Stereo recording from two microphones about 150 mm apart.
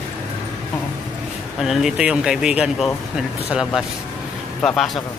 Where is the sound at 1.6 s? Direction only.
5° right (ahead or behind).